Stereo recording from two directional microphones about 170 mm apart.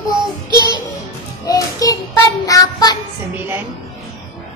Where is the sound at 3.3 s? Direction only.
10° right (ahead or behind).